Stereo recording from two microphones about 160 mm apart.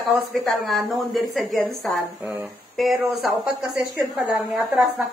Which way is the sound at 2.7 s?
Centre (ahead or behind).